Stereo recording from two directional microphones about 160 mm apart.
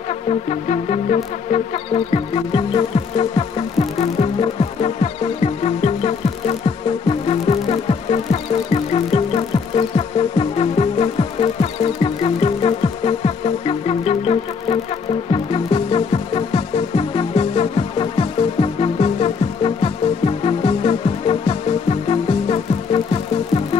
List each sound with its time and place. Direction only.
0.3 s music: 45° left (ahead or behind)